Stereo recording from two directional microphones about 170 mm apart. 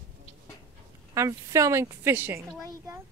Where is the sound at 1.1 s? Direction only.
15° right (ahead or behind).